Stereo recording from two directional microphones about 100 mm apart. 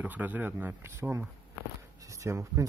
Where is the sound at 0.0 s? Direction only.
15° right (ahead or behind).